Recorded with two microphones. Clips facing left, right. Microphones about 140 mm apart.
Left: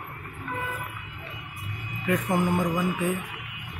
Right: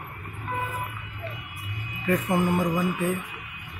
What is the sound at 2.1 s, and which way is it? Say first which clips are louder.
Speech: right 1 dB; centre (ahead or behind).